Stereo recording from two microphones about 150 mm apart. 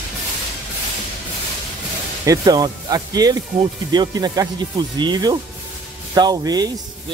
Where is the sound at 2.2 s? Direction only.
25° right (ahead or behind).